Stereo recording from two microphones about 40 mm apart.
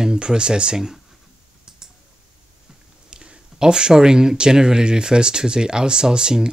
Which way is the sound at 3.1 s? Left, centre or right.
Right.